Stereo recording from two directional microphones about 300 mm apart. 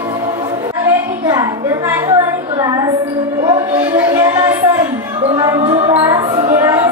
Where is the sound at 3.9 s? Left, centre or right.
Centre.